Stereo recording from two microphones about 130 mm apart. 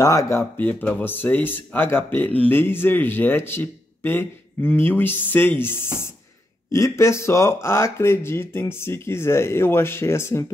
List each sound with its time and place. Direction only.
0.0 s speech: 25° left (ahead or behind)